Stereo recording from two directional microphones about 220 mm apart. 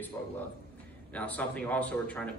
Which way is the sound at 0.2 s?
15° left (ahead or behind).